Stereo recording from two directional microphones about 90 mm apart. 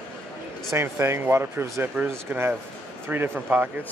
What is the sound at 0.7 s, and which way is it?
Speech, 30° right (ahead or behind).